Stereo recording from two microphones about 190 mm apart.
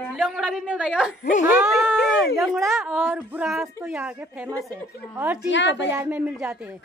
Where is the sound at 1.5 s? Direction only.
Centre (ahead or behind).